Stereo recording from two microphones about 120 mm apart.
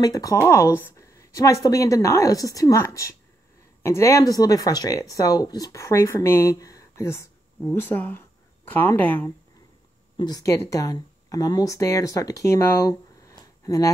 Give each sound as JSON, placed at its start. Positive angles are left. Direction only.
{"t": 0.0, "sound": "speech", "side_deg": 30}
{"t": 10.1, "sound": "speech", "side_deg": 35}